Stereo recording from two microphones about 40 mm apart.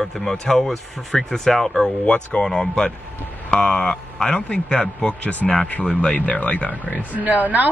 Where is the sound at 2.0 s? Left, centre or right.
Left.